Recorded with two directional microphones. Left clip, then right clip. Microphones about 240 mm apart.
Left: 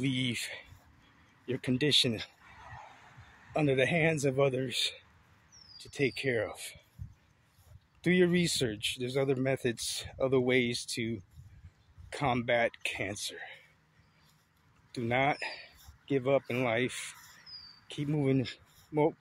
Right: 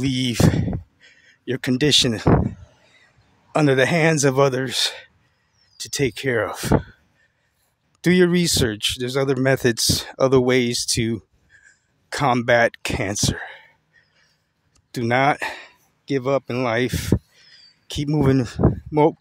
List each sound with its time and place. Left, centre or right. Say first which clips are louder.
0.0 s speech: right 9 dB; right
1.4 s speech: right 11 dB; right
3.5 s speech: right 11 dB; right
8.0 s speech: right 10 dB; right
15.0 s speech: right 11 dB; right
17.9 s speech: right 11 dB; right